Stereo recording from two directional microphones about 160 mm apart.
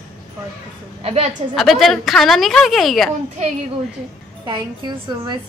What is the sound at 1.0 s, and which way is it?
Speech, 40° right (ahead or behind).